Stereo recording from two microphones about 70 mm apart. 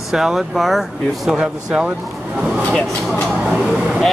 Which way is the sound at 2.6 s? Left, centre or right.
Centre.